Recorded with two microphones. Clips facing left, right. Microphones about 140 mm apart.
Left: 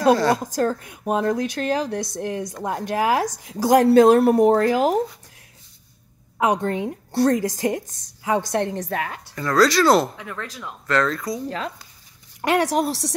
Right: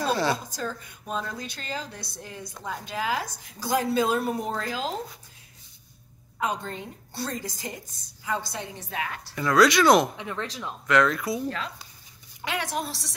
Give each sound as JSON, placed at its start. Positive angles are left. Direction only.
{"t": 0.4, "sound": "a woman's voice", "side_deg": 75}
{"t": 6.3, "sound": "a woman's voice", "side_deg": 70}
{"t": 8.8, "sound": "a woman's voice", "side_deg": 40}
{"t": 9.3, "sound": "speech", "side_deg": -5}
{"t": 9.9, "sound": "speech", "side_deg": -20}
{"t": 11.1, "sound": "speech", "side_deg": -5}
{"t": 12.4, "sound": "speech", "side_deg": 80}